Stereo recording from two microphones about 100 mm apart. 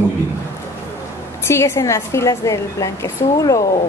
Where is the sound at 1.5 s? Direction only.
30° left (ahead or behind).